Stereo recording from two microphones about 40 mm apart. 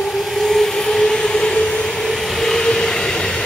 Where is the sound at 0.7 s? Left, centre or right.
Centre.